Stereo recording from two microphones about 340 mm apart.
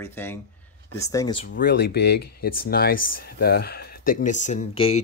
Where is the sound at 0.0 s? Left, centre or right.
Centre.